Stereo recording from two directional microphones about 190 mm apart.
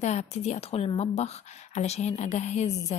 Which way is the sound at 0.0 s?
35° left (ahead or behind).